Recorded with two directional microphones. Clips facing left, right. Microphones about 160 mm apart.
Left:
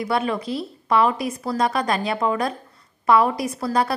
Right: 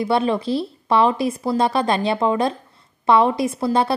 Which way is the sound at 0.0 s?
30° right (ahead or behind).